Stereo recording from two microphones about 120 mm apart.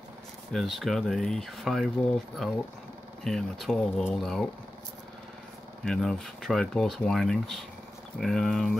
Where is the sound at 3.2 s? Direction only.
5° left (ahead or behind).